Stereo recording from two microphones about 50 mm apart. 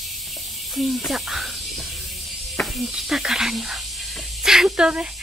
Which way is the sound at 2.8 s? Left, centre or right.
Centre.